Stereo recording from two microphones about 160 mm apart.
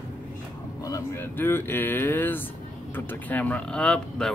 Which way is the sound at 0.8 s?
15° left (ahead or behind).